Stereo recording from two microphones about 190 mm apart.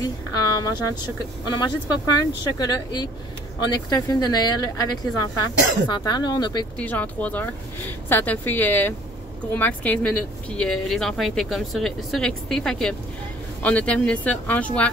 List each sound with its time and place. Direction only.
0.0 s a woman's voice: 20° left (ahead or behind)
2.6 s speech: 20° left (ahead or behind)
6.8 s speech: 10° left (ahead or behind)